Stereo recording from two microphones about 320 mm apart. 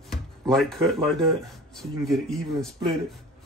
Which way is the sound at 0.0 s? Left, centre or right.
Centre.